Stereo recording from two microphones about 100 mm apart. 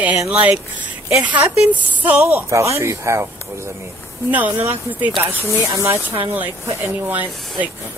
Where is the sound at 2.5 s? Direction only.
30° right (ahead or behind).